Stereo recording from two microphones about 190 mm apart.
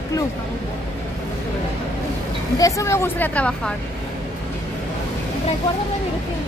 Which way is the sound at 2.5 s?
15° left (ahead or behind).